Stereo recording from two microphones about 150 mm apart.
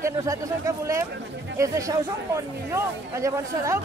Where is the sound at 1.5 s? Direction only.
20° right (ahead or behind).